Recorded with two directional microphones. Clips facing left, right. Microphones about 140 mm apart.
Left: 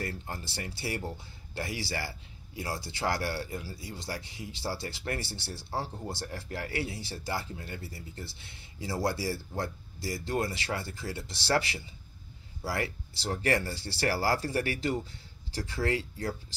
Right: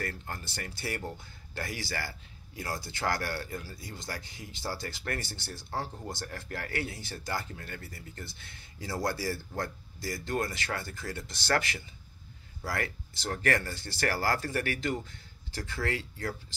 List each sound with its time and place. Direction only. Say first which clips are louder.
0.0 s speech: left 1 dB; 25° left (ahead or behind)